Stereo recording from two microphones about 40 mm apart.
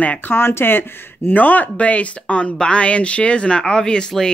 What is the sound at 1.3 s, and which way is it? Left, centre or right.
Speech, left.